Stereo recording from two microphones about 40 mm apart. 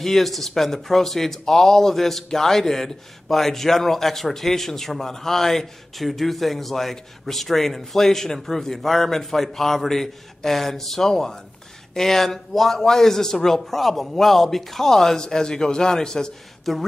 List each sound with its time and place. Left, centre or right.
0.0 s a man's voice: centre
16.7 s speech: centre